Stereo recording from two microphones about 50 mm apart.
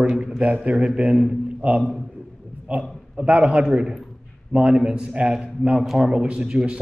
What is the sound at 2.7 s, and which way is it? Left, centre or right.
A man's voice, centre.